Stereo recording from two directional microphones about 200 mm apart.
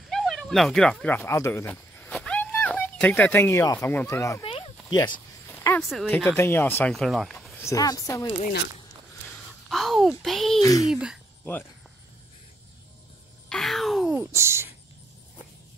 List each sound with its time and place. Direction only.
0.1 s speech: centre (ahead or behind)
4.5 s a sound: 30° left (ahead or behind)
5.8 s speech: centre (ahead or behind)
7.6 s speech: 20° left (ahead or behind)
9.7 s speech: centre (ahead or behind)
10.6 s speech: 15° left (ahead or behind)
10.9 s speech: 5° right (ahead or behind)
13.5 s wail: centre (ahead or behind)